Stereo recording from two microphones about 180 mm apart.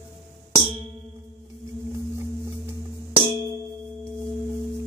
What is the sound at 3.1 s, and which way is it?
Clang, 20° left (ahead or behind).